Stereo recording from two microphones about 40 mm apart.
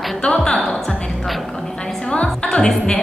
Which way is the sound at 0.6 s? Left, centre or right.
Centre.